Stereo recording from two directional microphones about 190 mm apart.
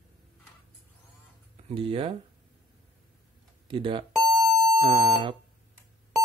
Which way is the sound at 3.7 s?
25° right (ahead or behind).